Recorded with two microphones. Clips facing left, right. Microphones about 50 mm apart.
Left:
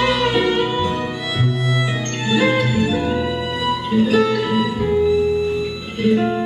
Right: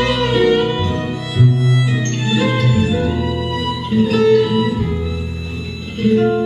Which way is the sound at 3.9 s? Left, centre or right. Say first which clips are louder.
Right 4 dB; centre.